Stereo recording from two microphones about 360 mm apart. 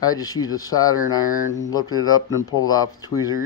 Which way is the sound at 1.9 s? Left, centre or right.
Left.